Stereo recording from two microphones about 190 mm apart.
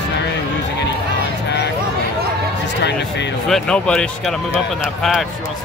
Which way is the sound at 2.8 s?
65° left (ahead or behind).